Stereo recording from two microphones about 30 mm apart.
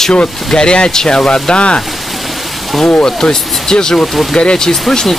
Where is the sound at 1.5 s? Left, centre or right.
Left.